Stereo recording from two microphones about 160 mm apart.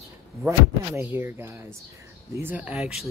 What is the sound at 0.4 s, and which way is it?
Speech, 15° right (ahead or behind).